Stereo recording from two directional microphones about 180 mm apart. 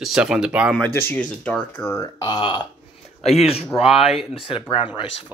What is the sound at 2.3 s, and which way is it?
Speech, 25° left (ahead or behind).